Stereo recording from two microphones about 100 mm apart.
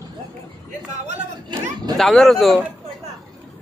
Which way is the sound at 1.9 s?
5° left (ahead or behind).